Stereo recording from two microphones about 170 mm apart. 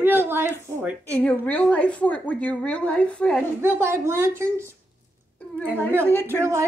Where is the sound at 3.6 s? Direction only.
15° right (ahead or behind).